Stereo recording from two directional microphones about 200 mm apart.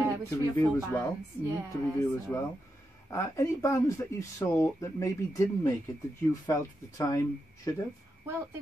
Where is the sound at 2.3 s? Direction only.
5° left (ahead or behind).